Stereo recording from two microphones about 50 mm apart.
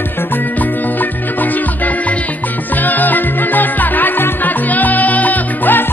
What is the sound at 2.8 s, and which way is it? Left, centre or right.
Music, left.